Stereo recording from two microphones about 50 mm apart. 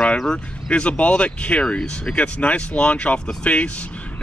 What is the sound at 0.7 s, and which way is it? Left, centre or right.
Speech, left.